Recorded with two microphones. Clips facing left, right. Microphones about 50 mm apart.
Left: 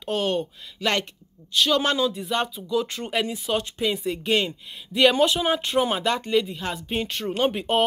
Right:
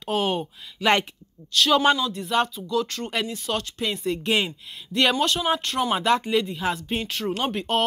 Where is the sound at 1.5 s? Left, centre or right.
Centre.